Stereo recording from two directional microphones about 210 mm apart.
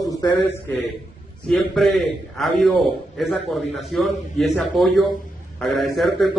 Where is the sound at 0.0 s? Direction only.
15° left (ahead or behind).